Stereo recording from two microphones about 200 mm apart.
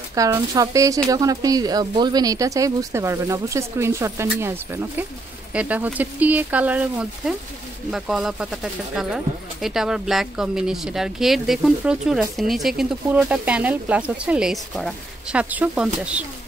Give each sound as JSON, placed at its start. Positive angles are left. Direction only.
{"t": 0.1, "sound": "speech", "side_deg": -15}